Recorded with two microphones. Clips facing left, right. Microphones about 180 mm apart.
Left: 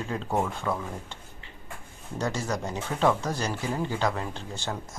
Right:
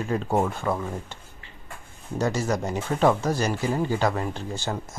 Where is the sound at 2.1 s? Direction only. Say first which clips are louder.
Right 5 dB; 10° right (ahead or behind).